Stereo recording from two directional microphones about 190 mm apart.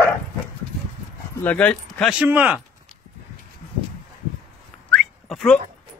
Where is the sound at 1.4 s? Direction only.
10° left (ahead or behind).